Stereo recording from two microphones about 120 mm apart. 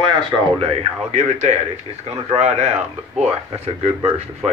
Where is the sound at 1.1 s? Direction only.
75° right (ahead or behind).